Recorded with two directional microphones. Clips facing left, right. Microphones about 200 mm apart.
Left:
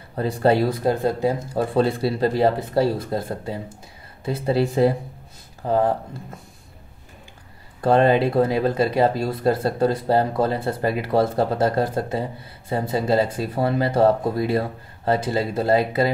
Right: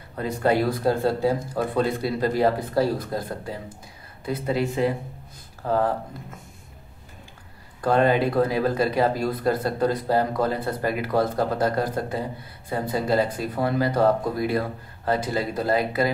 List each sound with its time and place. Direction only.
0.1 s speech: 30° left (ahead or behind)
5.6 s speech: 20° left (ahead or behind)
7.8 s speech: 25° left (ahead or behind)